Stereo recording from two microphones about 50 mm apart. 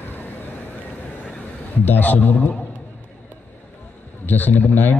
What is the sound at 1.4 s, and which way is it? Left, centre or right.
A man's voice, left.